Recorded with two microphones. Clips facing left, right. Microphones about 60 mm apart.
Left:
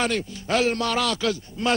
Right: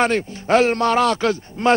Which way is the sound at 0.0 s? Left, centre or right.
Right.